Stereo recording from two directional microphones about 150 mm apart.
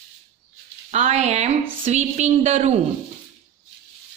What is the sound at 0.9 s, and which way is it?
A woman's voice, 50° right (ahead or behind).